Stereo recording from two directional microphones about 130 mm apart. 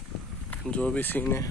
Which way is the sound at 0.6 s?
10° left (ahead or behind).